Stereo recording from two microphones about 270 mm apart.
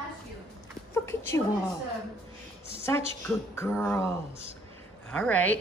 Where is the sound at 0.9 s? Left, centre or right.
Centre.